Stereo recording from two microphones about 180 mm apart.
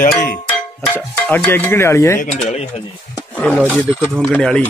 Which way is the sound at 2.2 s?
40° left (ahead or behind).